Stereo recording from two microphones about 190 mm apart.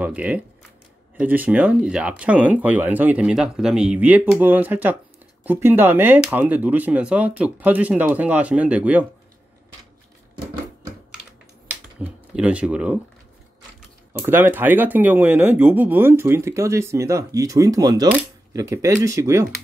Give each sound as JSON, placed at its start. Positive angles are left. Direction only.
{"t": 0.0, "sound": "speech", "side_deg": -5}
{"t": 11.6, "sound": "typing", "side_deg": -5}
{"t": 14.1, "sound": "speech", "side_deg": -10}